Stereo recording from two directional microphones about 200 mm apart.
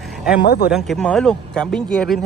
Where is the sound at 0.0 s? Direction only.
Centre (ahead or behind).